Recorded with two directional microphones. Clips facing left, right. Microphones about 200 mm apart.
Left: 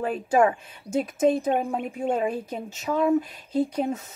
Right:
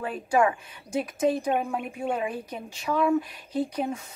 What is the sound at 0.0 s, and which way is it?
A woman's voice, 25° left (ahead or behind).